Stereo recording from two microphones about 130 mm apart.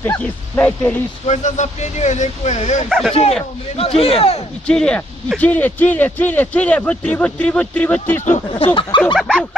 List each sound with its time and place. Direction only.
0.6 s speech: 15° left (ahead or behind)
1.2 s speech: 60° left (ahead or behind)
2.9 s a sound: centre (ahead or behind)
3.7 s a man's voice: 50° left (ahead or behind)
4.6 s speech: 5° left (ahead or behind)
8.5 s speech: 45° left (ahead or behind)
9.0 s a sound: 5° left (ahead or behind)